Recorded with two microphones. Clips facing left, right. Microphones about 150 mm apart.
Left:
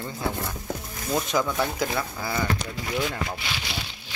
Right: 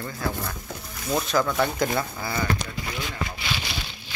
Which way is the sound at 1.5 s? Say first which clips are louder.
Right 2 dB; 5° left (ahead or behind).